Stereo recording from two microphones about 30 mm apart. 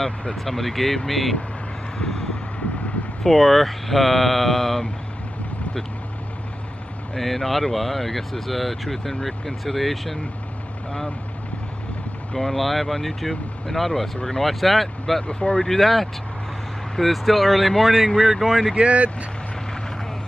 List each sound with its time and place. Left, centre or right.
0.4 s speech: centre
3.3 s speech: centre
7.2 s speech: centre
12.4 s speech: centre
15.2 s speech: left
15.5 s speech: centre
17.1 s speech: centre
18.8 s speech: right